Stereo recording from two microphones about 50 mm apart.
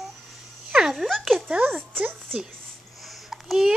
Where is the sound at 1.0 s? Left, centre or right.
Centre.